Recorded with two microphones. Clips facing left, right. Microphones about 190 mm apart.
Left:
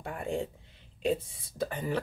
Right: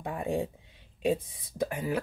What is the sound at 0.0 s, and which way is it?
Speech, 15° right (ahead or behind).